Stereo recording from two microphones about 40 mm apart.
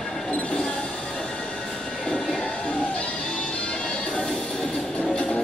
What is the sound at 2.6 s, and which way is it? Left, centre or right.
Music, left.